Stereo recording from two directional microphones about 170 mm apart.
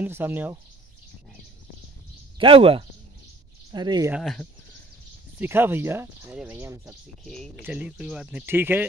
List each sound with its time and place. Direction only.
0.0 s speech: 10° right (ahead or behind)
2.3 s speech: 30° right (ahead or behind)
4.1 s speech: centre (ahead or behind)
5.4 s speech: 10° right (ahead or behind)
7.2 s speech: 5° left (ahead or behind)
7.6 s speech: 5° right (ahead or behind)